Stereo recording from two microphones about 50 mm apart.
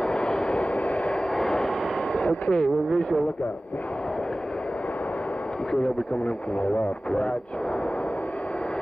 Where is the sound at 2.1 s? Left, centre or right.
Left.